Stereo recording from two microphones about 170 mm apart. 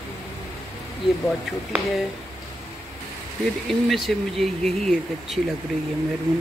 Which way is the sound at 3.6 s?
Centre (ahead or behind).